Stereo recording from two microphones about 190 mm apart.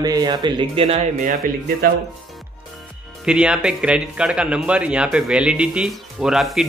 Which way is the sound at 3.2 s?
5° right (ahead or behind).